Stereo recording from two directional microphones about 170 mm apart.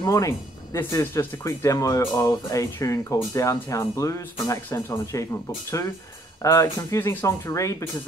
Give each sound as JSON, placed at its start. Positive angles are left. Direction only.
{"t": 0.0, "sound": "speech", "side_deg": 20}
{"t": 6.4, "sound": "speech", "side_deg": 20}